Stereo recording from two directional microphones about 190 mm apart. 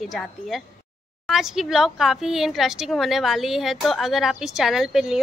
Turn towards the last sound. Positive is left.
turn(degrees=0)  # may be behind; listen again after turning